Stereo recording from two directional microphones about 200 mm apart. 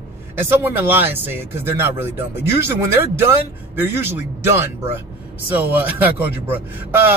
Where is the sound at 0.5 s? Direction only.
10° right (ahead or behind).